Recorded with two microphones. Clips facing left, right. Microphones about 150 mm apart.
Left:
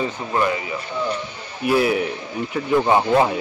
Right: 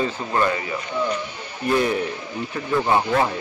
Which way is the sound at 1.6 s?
5° left (ahead or behind).